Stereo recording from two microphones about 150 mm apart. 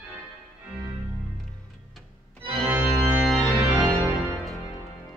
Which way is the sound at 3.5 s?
30° right (ahead or behind).